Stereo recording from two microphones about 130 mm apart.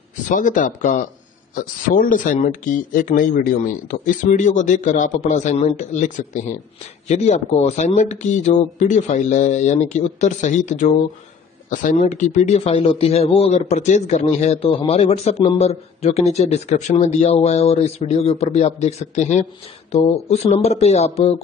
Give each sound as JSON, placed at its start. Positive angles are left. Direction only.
{"t": 0.3, "sound": "speech", "side_deg": 85}
{"t": 7.1, "sound": "speech", "side_deg": 60}
{"t": 11.7, "sound": "speech", "side_deg": 80}